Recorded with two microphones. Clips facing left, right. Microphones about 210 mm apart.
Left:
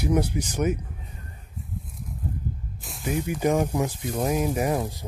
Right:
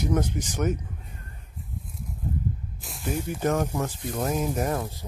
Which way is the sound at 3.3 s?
10° left (ahead or behind).